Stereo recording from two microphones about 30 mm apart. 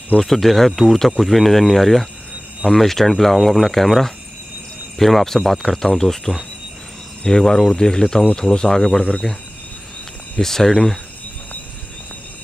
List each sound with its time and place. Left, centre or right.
0.2 s speech: centre; by 9.2 s left
10.4 s speech: centre